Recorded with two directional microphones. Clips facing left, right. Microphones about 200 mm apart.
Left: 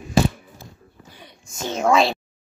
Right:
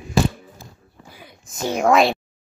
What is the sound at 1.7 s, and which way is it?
Speech, 10° right (ahead or behind).